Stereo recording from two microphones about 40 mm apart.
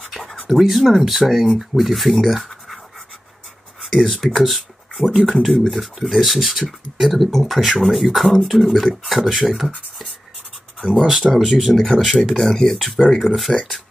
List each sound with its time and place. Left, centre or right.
0.1 s speech: centre
3.8 s speech: centre
11.1 s speech: centre
12.4 s speech: centre
12.7 s speech: centre
13.5 s speech: centre